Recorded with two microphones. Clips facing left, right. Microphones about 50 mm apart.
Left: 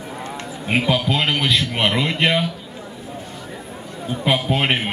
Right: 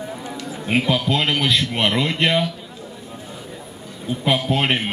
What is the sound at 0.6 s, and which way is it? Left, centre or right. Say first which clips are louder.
A man's voice: even; centre.